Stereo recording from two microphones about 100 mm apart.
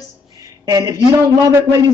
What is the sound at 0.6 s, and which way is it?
Speech, 35° right (ahead or behind).